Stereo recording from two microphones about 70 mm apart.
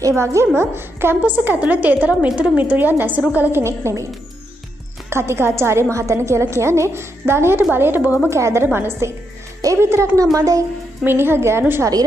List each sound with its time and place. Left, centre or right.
0.0 s a woman's voice: right
3.6 s a woman's voice: right
5.1 s a woman's voice: right
8.3 s a woman's voice: right
10.3 s speech: right
11.1 s a woman's voice: right